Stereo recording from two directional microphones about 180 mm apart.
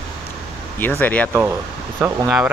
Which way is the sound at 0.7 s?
10° left (ahead or behind).